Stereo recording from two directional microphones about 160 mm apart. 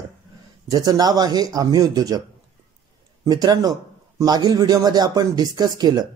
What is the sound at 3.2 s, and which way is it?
Speech, 25° right (ahead or behind).